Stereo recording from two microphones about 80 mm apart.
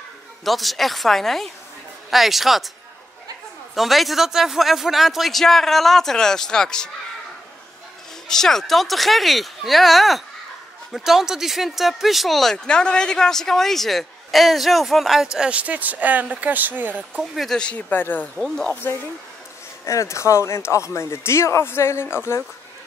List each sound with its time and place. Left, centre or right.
0.5 s speech: centre
3.7 s speech: centre
8.3 s speech: centre
15.3 s speech: centre
17.2 s speech: centre
17.6 s speech: centre
19.8 s speech: left